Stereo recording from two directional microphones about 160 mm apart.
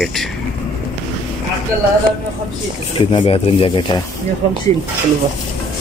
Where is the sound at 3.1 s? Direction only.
35° left (ahead or behind).